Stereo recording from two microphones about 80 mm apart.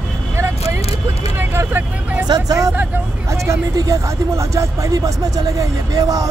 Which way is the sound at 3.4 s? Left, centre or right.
Right.